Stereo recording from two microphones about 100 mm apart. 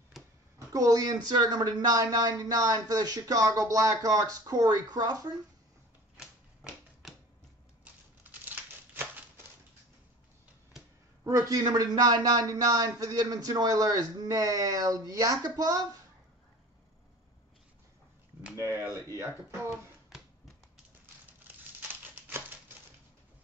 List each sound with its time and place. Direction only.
0.2 s a sound: centre (ahead or behind)
0.7 s a man's voice: 35° right (ahead or behind)
6.1 s typewriter: 5° right (ahead or behind)
7.8 s a sound: 20° right (ahead or behind)
11.2 s a man's voice: 35° right (ahead or behind)
18.6 s a man's voice: 25° right (ahead or behind)
22.1 s typewriter: 20° right (ahead or behind)